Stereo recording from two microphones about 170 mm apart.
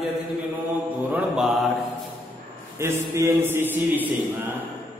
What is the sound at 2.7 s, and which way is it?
Mantra, 15° right (ahead or behind).